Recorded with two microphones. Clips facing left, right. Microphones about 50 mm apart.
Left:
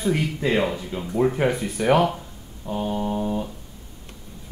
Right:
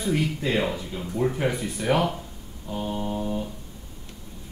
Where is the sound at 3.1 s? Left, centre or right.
Centre.